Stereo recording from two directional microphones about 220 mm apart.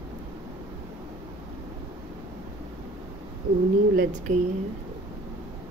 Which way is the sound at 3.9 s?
40° right (ahead or behind).